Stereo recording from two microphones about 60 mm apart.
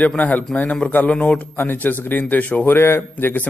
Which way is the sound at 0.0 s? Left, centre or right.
Left.